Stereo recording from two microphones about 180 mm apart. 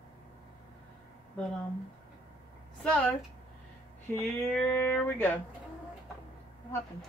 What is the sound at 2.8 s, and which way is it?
Speech, 5° left (ahead or behind).